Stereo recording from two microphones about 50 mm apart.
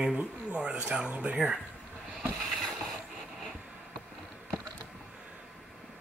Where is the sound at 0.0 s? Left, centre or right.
Right.